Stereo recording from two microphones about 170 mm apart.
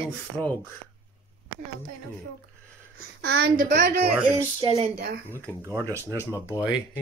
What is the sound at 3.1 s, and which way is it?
Speech, 75° right (ahead or behind).